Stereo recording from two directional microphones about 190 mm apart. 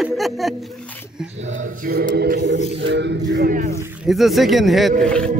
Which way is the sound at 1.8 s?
50° right (ahead or behind).